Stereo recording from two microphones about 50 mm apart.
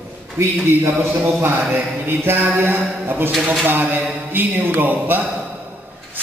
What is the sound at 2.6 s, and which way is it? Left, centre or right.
Speech, right.